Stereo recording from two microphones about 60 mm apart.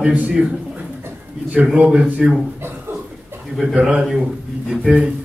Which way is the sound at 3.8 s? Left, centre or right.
Centre.